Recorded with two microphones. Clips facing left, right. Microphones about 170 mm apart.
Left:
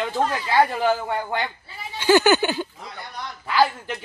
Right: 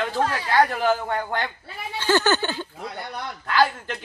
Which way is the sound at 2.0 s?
10° left (ahead or behind).